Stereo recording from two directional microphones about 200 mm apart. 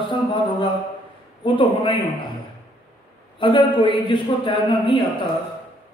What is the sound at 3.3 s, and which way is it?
A man's voice, 25° left (ahead or behind).